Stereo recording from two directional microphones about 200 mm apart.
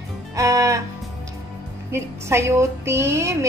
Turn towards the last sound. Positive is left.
turn(degrees=-15)  # may be behind; listen again after turning